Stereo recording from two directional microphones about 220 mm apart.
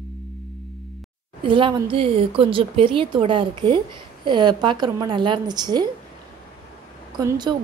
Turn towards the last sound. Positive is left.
turn(degrees=-20)  # may be behind; listen again after turning